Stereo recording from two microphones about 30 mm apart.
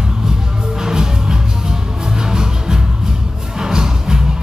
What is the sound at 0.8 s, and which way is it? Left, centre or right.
Music, right.